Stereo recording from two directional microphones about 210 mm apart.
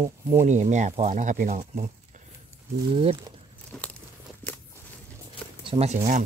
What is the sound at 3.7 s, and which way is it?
Crumpling, 5° left (ahead or behind).